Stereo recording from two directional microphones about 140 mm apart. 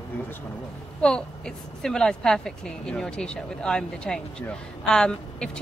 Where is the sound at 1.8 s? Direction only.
5° left (ahead or behind).